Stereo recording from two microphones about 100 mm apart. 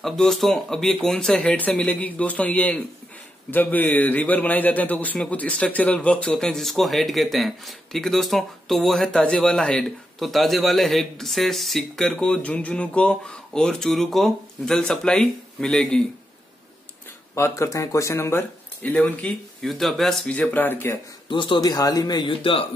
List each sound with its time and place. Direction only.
0.0 s a man's voice: 5° left (ahead or behind)
17.4 s speech: 30° left (ahead or behind)
18.8 s a man's voice: 15° left (ahead or behind)
19.6 s speech: centre (ahead or behind); by 21.0 s 20° left (ahead or behind)
21.3 s speech: 55° left (ahead or behind)
21.5 s speech: 40° left (ahead or behind)
22.4 s speech: 65° left (ahead or behind)